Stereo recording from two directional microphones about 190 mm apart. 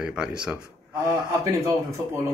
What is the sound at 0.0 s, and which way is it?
Speech, 5° right (ahead or behind).